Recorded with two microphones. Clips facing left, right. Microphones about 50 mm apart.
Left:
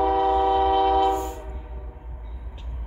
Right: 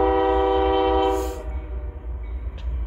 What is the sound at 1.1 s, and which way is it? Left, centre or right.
Train, right.